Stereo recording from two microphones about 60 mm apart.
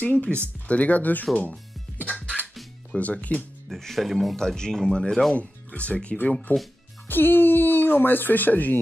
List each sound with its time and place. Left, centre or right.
0.0 s speech: left
1.3 s speech: centre
2.4 s music: centre
3.0 s speech: left
3.6 s speech: centre
4.4 s speech: centre
5.3 s speech: left